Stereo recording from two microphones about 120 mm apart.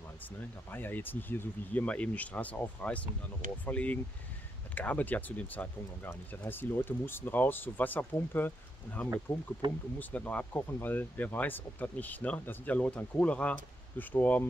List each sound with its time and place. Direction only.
0.2 s speech: 15° left (ahead or behind)
9.6 s speech: 45° right (ahead or behind)
9.9 s speech: 15° left (ahead or behind)